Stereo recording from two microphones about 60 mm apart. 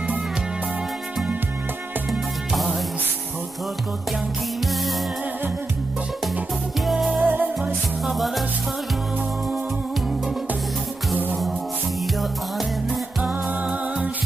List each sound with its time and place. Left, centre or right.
2.0 s music: centre
6.9 s music: centre
7.2 s music: right
8.0 s music: centre
13.2 s music: centre